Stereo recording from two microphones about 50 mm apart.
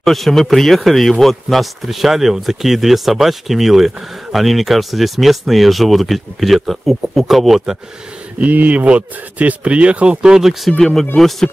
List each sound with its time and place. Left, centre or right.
0.0 s a man's voice: centre
8.4 s speech: right
10.2 s speech: centre
11.1 s a man's voice: centre